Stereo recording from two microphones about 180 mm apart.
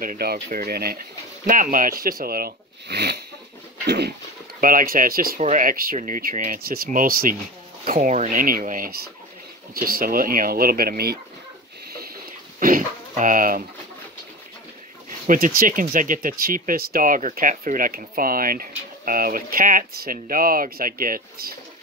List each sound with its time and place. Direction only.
0.0 s speech: 55° right (ahead or behind)
3.8 s a sound: 65° right (ahead or behind)
4.6 s speech: 50° right (ahead or behind)
12.5 s dog: 50° right (ahead or behind)
15.2 s speech: 50° right (ahead or behind)